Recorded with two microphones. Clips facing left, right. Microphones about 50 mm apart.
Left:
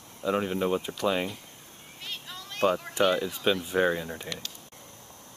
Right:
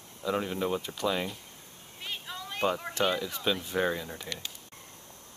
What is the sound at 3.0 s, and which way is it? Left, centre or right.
Speech, left.